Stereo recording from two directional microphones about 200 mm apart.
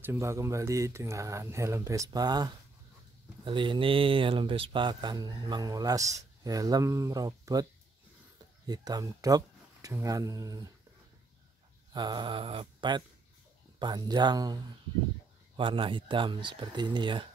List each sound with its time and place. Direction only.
0.0 s speech: 15° right (ahead or behind)
8.6 s speech: 20° right (ahead or behind)
11.9 s speech: 20° right (ahead or behind)